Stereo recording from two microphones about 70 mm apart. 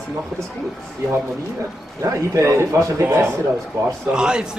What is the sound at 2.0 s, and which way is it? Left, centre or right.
A man's voice, right.